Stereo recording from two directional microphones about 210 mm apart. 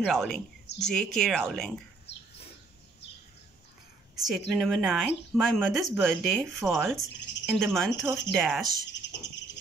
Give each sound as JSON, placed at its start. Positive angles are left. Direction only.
{"t": 0.0, "sound": "a woman's voice", "side_deg": 0}
{"t": 2.1, "sound": "a sound", "side_deg": 55}
{"t": 4.1, "sound": "a woman's voice", "side_deg": 0}
{"t": 9.0, "sound": "bird", "side_deg": 55}